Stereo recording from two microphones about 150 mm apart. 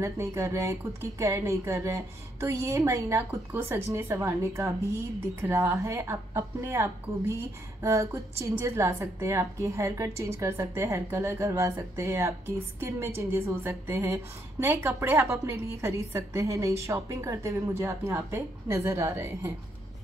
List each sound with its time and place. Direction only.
0.0 s a woman's voice: 20° right (ahead or behind)